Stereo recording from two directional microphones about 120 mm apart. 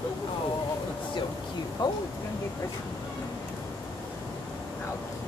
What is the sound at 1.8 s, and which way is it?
Speech, 35° left (ahead or behind).